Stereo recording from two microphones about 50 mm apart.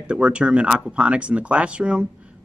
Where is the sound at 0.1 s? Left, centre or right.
Right.